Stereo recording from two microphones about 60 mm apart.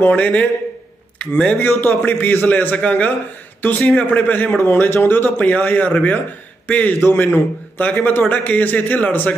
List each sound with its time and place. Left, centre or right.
0.0 s a man's voice: left
1.6 s a man's voice: left